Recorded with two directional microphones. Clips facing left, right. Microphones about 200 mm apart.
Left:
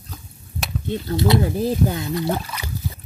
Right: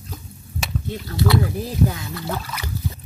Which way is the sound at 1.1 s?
25° left (ahead or behind).